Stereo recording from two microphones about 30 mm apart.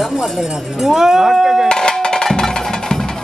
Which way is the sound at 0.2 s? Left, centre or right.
Right.